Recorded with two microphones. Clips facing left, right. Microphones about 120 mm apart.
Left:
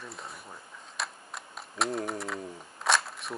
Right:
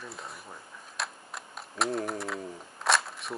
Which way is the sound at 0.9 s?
Centre (ahead or behind).